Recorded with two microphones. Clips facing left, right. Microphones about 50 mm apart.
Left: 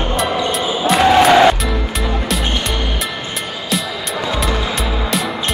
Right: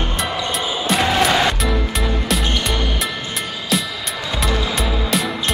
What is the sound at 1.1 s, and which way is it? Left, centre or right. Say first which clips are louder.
Music: left 8 dB; left.